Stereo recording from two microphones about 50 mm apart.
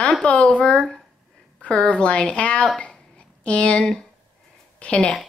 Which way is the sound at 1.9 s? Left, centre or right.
Left.